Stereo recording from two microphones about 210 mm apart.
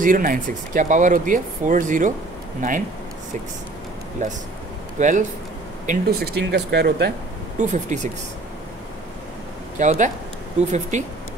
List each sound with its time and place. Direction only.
0.0 s speech: 40° right (ahead or behind)
4.2 s speech: 35° right (ahead or behind)
5.9 s speech: 45° right (ahead or behind)
7.5 s speech: 35° right (ahead or behind)
9.8 s speech: 35° right (ahead or behind)